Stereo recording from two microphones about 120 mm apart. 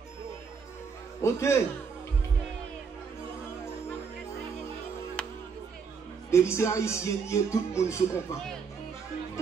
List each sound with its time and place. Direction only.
1.2 s speech: 25° left (ahead or behind)
5.2 s music: 10° left (ahead or behind)
6.3 s speech: 25° left (ahead or behind)